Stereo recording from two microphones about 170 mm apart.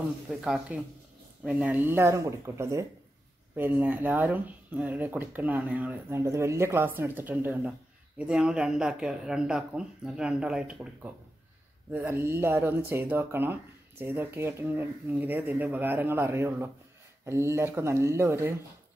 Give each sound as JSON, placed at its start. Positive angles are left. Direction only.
{"t": 0.3, "sound": "speech", "side_deg": -5}